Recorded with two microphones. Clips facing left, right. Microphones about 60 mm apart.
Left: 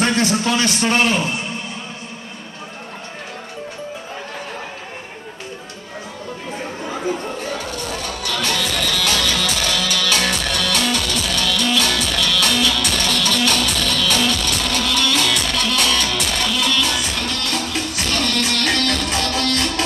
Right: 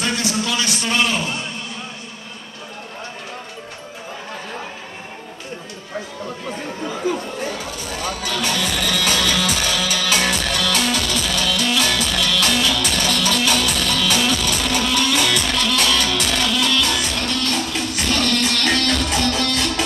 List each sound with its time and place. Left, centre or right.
0.0 s a man's voice: left
8.0 s music: centre